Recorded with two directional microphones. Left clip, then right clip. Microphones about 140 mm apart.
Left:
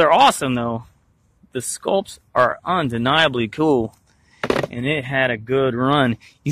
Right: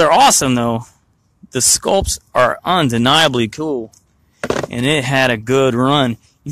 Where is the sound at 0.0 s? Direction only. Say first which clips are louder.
Right 3 dB; 20° right (ahead or behind).